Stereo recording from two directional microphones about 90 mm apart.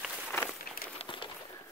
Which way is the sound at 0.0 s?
10° right (ahead or behind).